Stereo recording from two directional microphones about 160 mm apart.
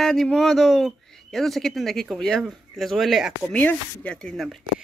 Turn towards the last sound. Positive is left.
turn(degrees=5)  # may be behind; listen again after turning